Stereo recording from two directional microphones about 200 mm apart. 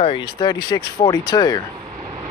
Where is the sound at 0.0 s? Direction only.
25° left (ahead or behind).